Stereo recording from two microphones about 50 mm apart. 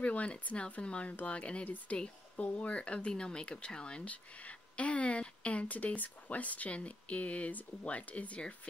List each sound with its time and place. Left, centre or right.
0.0 s speech: left